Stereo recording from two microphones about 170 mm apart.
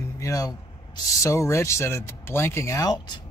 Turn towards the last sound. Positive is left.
turn(degrees=20)  # may be behind; listen again after turning